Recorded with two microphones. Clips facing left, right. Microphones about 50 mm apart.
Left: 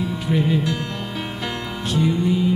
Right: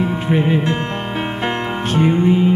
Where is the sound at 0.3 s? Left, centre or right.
Right.